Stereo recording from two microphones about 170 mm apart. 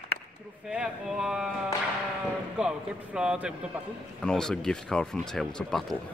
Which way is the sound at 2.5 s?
5° right (ahead or behind).